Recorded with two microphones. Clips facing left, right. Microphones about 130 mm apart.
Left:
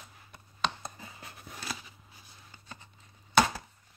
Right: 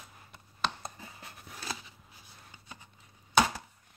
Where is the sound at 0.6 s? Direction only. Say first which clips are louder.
Left 1 dB; 5° right (ahead or behind).